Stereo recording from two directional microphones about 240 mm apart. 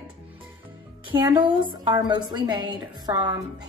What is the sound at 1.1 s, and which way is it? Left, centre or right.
A woman's voice, centre.